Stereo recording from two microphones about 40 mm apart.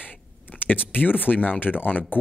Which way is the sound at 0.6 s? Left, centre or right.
Left.